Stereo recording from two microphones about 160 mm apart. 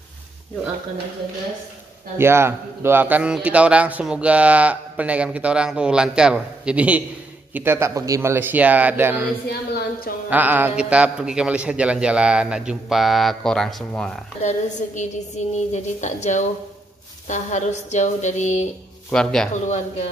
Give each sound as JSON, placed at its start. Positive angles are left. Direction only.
{"t": 2.1, "sound": "a man's voice", "side_deg": -15}
{"t": 9.5, "sound": "a woman's voice", "side_deg": 70}
{"t": 10.3, "sound": "a man's voice", "side_deg": -10}
{"t": 15.0, "sound": "a woman's voice", "side_deg": 45}
{"t": 19.0, "sound": "speech", "side_deg": 5}